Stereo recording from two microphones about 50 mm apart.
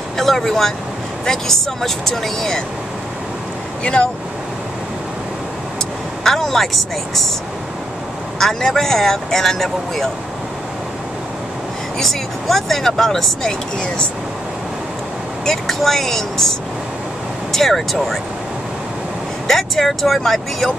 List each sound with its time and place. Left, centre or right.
0.2 s speech: centre
3.8 s speech: left
6.2 s speech: centre
8.4 s speech: centre
12.0 s speech: centre
15.4 s speech: centre
19.4 s speech: centre